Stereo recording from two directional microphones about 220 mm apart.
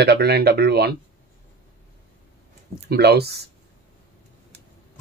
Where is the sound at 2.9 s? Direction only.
45° right (ahead or behind).